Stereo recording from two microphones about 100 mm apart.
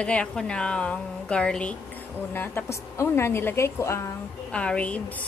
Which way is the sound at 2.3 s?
25° left (ahead or behind).